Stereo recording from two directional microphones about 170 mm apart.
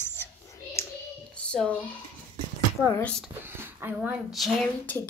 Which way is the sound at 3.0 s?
5° left (ahead or behind).